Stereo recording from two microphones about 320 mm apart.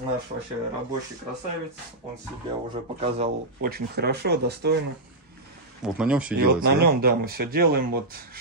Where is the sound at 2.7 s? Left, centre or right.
Centre.